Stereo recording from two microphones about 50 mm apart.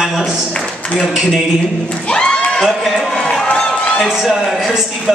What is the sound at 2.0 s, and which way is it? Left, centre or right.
Crowd, left.